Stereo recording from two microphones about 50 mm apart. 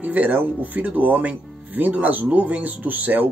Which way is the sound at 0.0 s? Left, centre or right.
Right.